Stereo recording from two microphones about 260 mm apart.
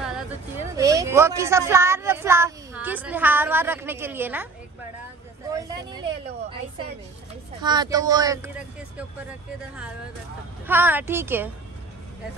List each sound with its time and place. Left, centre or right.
0.7 s a woman's voice: centre
5.9 s a woman's voice: centre
7.6 s a woman's voice: centre
10.7 s a woman's voice: centre